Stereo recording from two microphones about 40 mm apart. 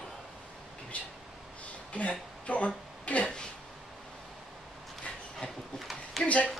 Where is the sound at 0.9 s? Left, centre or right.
Left.